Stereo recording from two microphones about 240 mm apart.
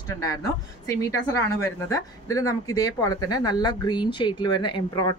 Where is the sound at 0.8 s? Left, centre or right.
Centre.